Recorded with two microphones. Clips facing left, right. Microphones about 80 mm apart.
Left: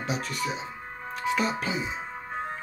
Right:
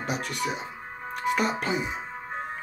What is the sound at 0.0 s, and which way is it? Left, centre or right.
Speech, right.